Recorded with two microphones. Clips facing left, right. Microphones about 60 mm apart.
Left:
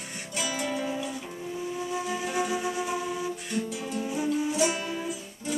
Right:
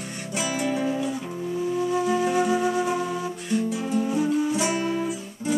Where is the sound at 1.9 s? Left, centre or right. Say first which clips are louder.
Right 7 dB; centre.